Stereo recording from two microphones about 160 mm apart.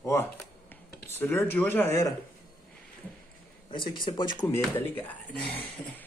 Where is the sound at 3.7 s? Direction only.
30° left (ahead or behind).